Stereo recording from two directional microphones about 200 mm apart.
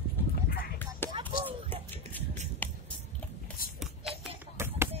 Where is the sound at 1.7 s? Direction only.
10° left (ahead or behind).